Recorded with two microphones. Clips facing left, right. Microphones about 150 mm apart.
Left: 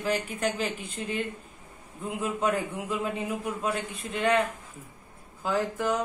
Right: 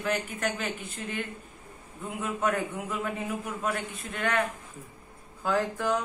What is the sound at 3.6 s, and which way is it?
Speech, 25° left (ahead or behind).